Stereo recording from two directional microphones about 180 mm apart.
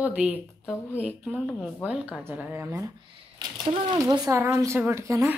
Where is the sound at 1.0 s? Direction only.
5° right (ahead or behind).